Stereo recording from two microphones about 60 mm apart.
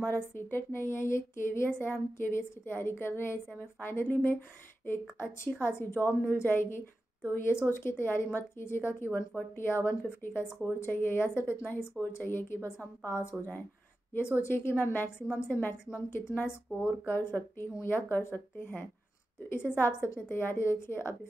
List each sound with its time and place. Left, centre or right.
0.0 s a woman's voice: left
11.6 s a woman's voice: left